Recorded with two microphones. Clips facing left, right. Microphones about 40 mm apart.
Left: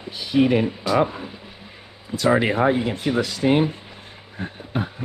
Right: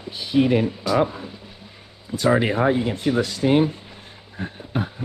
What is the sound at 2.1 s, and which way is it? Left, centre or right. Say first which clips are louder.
Speech: even; left.